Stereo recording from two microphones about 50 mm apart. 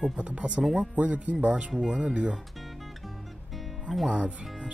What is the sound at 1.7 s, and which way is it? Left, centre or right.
Speech, centre.